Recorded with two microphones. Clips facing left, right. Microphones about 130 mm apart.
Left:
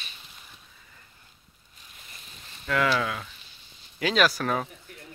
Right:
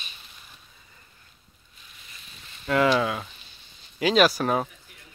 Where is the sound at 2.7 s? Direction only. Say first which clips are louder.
Right 4 dB; 25° right (ahead or behind).